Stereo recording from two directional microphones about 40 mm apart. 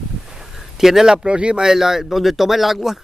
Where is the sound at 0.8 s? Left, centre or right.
Centre.